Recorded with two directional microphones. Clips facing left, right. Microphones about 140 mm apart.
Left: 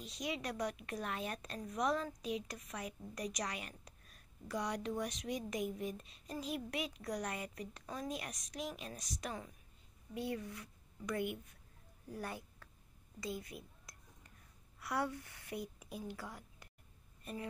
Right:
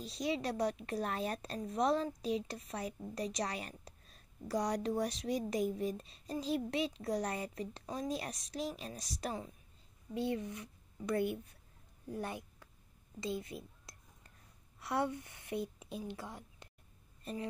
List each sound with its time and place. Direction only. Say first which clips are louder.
0.0 s a woman's voice: right 5 dB; 35° right (ahead or behind)
11.1 s a woman's voice: right 5 dB; 35° right (ahead or behind)
12.1 s a child's voice: right 4 dB; 20° right (ahead or behind)
17.2 s a sound: right 4 dB; 30° right (ahead or behind)